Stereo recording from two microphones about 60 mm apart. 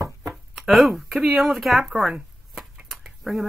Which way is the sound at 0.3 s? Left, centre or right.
Centre.